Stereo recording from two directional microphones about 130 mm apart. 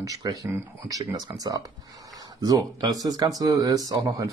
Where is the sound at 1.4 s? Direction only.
30° right (ahead or behind).